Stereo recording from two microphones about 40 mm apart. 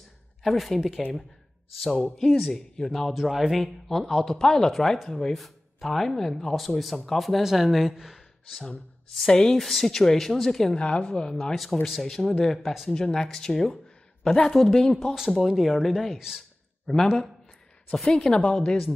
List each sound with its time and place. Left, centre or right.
0.4 s speech: centre
0.7 s speech: centre
1.8 s speech: centre
3.2 s speech: centre
3.9 s speech: centre
9.3 s speech: centre
10.8 s a woman's voice: left
11.5 s speech: centre
15.3 s speech: centre
16.2 s speech: centre
16.9 s speech: centre